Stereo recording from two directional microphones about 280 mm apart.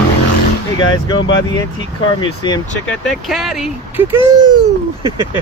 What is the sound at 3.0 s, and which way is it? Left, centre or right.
Speech, centre.